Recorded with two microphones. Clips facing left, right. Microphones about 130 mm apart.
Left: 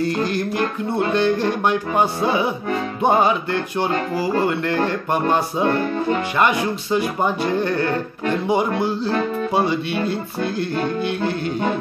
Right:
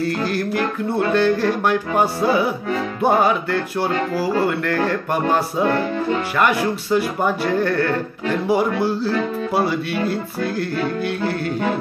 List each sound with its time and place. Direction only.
0.2 s music: 20° left (ahead or behind)
6.9 s music: 20° left (ahead or behind)
10.4 s music: 25° left (ahead or behind)